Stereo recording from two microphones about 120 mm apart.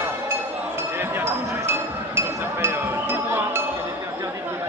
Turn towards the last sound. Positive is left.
turn(degrees=-20)  # may be behind; listen again after turning